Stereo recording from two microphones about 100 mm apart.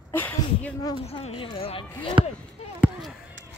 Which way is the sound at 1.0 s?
90° left.